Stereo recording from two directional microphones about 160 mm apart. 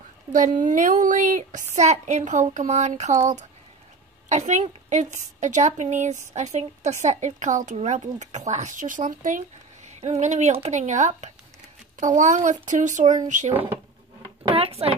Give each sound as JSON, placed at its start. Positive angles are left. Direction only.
{"t": 0.3, "sound": "a woman's voice", "side_deg": -55}
{"t": 9.8, "sound": "a woman's voice", "side_deg": -45}
{"t": 14.4, "sound": "a sound", "side_deg": -35}